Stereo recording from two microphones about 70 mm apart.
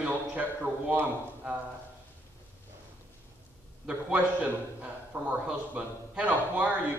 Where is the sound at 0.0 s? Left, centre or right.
Right.